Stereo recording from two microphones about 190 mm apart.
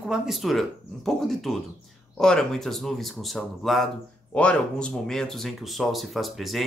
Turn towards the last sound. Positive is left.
turn(degrees=0)  # may be behind; listen again after turning